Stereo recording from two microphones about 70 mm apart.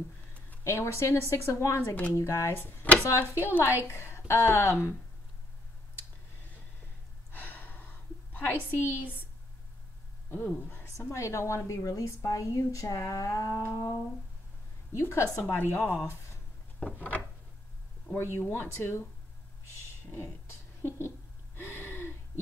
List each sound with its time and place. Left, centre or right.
0.7 s a woman's voice: left
7.2 s gasp: left
8.5 s a woman's voice: left
10.3 s a woman's voice: left
14.9 s a woman's voice: left
16.8 s a woman's voice: left
18.1 s a woman's voice: left
20.2 s speech: left
21.5 s gasp: left